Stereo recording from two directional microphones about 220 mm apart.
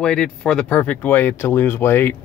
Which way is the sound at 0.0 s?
5° left (ahead or behind).